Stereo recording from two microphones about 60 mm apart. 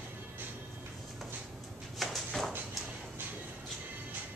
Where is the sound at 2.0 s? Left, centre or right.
Centre.